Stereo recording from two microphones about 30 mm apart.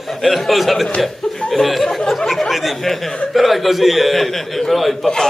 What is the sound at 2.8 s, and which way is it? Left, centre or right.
A man's voice, centre.